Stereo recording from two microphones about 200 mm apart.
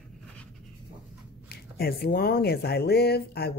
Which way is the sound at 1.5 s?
50° left (ahead or behind).